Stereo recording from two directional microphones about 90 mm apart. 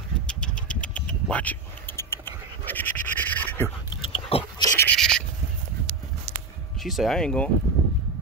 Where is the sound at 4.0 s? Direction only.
85° left.